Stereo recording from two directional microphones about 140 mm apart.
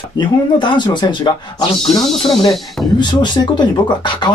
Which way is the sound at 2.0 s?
Centre (ahead or behind).